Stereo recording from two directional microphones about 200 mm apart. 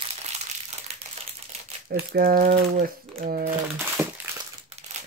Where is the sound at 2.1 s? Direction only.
50° right (ahead or behind).